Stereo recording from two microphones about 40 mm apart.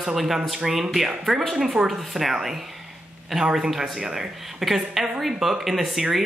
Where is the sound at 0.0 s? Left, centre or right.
Centre.